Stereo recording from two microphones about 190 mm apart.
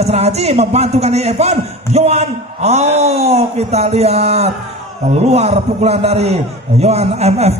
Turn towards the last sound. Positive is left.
turn(degrees=-35)  # may be behind; listen again after turning